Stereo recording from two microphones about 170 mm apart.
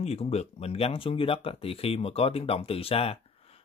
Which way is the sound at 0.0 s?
40° left (ahead or behind).